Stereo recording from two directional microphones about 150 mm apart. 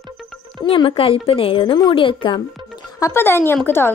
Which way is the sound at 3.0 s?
15° left (ahead or behind).